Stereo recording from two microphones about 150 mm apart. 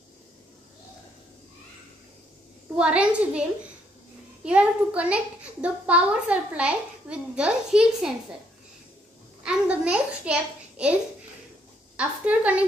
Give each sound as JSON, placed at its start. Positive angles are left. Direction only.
{"t": 2.7, "sound": "a child's voice", "side_deg": -5}
{"t": 4.5, "sound": "a child's voice", "side_deg": -10}
{"t": 9.4, "sound": "a sound", "side_deg": -5}
{"t": 12.0, "sound": "a child's voice", "side_deg": -10}